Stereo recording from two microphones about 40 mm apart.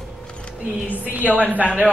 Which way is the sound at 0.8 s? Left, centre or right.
Right.